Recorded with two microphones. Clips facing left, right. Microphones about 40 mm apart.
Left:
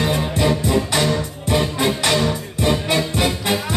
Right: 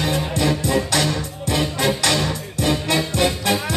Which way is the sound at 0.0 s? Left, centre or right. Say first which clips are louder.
Left 2 dB; centre.